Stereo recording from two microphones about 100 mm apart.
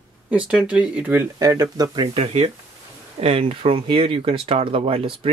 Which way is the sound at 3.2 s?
90° right.